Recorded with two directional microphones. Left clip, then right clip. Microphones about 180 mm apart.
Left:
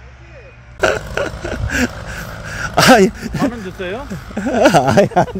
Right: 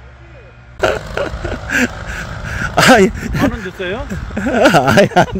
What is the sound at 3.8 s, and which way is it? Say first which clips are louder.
Speech: right 2 dB; 50° right (ahead or behind).